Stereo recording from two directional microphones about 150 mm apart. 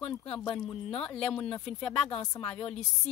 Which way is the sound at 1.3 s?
40° left (ahead or behind).